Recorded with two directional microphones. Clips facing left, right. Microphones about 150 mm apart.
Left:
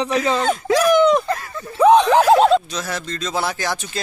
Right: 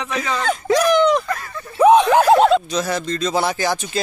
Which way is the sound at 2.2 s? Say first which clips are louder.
Even; centre (ahead or behind).